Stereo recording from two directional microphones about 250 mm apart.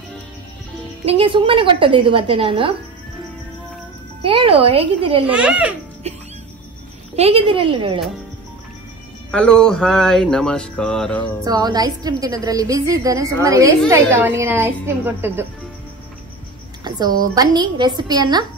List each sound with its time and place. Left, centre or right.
1.0 s a woman's voice: right
4.2 s a woman's voice: right
5.3 s speech: centre
7.2 s a woman's voice: right
9.3 s speech: centre
11.4 s a woman's voice: centre
16.8 s a woman's voice: centre